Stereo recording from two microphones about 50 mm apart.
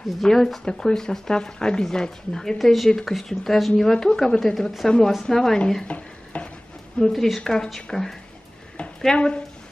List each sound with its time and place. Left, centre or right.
0.2 s speech: centre
5.9 s stir: left
7.1 s speech: centre
9.0 s speech: centre